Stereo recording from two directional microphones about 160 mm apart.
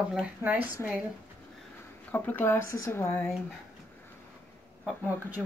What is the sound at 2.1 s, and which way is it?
Speech, 10° left (ahead or behind).